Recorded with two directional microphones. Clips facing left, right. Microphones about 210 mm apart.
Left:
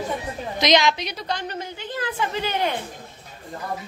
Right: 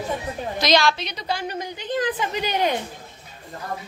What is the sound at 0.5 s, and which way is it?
Speech, 20° left (ahead or behind).